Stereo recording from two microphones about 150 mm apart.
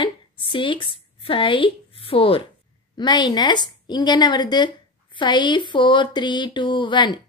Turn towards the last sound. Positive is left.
turn(degrees=30)  # may be behind; listen again after turning